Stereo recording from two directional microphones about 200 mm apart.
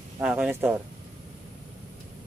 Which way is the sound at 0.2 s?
5° right (ahead or behind).